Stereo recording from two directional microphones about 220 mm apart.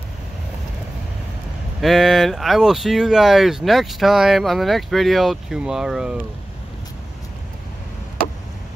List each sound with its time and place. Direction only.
1.8 s speech: centre (ahead or behind)